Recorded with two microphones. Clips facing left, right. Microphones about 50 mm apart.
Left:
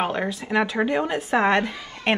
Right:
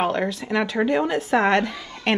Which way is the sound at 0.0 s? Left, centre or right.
Centre.